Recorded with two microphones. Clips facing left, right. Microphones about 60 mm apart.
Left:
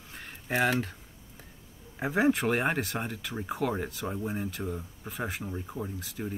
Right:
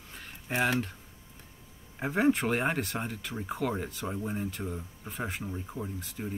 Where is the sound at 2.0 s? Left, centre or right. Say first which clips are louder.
Left 1 dB; centre.